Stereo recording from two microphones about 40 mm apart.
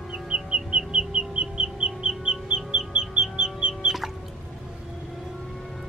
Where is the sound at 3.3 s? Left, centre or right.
Right.